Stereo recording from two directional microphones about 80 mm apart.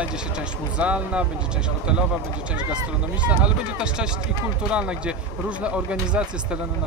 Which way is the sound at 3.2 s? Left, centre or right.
Centre.